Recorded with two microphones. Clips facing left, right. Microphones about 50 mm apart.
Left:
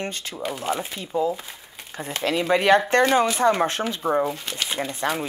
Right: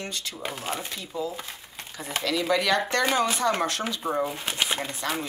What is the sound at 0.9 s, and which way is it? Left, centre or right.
Speech, left.